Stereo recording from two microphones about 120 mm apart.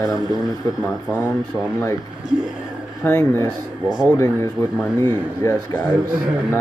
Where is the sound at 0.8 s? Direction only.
15° left (ahead or behind).